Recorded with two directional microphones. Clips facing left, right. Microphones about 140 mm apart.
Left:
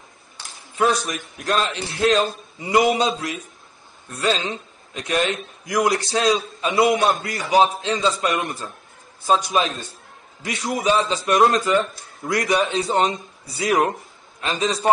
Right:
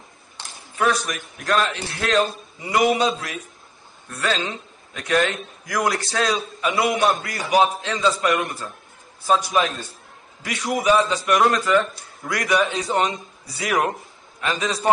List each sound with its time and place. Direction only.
0.7 s a man's voice: 25° left (ahead or behind)